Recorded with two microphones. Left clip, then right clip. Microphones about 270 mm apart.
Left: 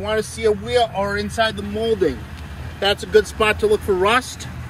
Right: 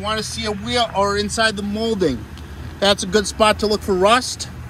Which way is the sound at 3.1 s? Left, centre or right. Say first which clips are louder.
Left 3 dB; right.